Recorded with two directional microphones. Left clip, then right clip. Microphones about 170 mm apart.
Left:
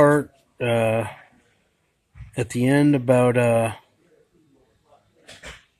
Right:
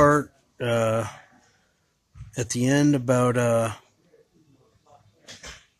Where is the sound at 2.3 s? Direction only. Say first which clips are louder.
Left 3 dB; centre (ahead or behind).